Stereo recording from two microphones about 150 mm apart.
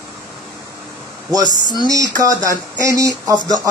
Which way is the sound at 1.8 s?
25° right (ahead or behind).